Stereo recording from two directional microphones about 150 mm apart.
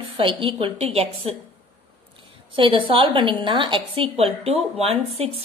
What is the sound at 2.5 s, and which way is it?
A woman's voice, 35° right (ahead or behind).